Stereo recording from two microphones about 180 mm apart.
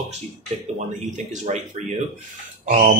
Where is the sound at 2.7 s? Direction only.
50° right (ahead or behind).